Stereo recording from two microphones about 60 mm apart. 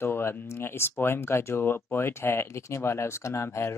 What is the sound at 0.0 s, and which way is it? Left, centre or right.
Speech, left.